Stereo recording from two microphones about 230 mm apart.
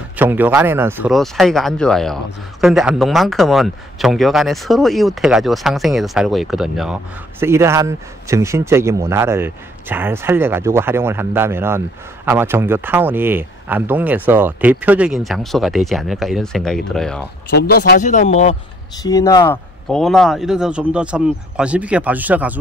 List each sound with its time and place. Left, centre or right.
0.2 s a man's voice: centre
17.5 s speech: left
19.0 s speech: centre
19.9 s speech: centre